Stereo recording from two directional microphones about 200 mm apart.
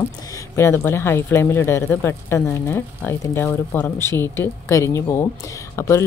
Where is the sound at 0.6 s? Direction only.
15° left (ahead or behind).